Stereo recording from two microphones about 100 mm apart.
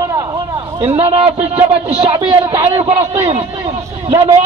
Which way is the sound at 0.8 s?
90° right.